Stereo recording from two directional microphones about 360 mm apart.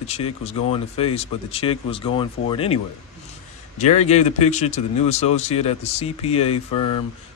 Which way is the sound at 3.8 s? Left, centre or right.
Centre.